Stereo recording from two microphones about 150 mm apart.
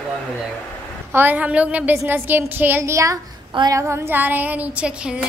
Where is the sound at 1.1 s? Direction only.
15° right (ahead or behind).